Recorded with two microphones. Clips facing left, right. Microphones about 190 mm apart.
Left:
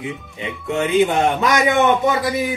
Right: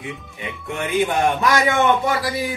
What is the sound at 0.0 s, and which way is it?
Speech, 20° left (ahead or behind).